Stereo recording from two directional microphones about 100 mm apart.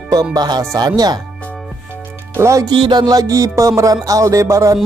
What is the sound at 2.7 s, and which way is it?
Speech, 45° right (ahead or behind).